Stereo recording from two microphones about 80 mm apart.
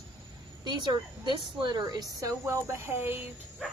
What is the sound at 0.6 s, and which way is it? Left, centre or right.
A woman's voice, right.